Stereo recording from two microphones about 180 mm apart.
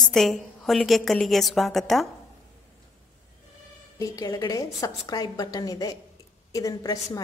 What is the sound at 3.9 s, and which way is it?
A woman's voice, 20° left (ahead or behind).